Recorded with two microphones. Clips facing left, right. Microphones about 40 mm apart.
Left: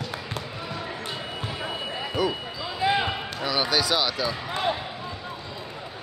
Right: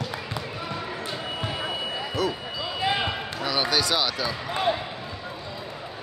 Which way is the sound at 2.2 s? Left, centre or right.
Centre.